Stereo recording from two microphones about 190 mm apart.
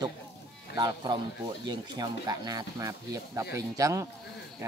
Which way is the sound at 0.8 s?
20° right (ahead or behind).